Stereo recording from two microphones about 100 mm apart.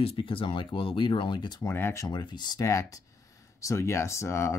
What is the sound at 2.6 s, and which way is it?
Speech, 30° left (ahead or behind).